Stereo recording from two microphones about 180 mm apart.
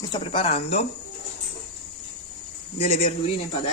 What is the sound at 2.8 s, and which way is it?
Speech, 35° left (ahead or behind).